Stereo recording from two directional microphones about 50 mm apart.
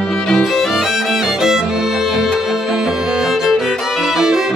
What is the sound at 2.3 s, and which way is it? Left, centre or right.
Music, centre.